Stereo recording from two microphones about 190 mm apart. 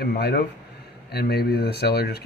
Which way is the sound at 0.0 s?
60° left (ahead or behind).